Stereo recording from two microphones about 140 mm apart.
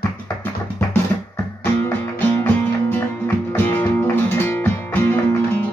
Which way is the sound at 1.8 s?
15° left (ahead or behind).